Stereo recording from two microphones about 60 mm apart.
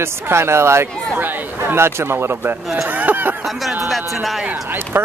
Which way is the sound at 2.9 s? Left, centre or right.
Right.